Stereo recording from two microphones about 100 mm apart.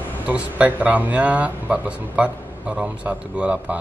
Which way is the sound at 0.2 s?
15° right (ahead or behind).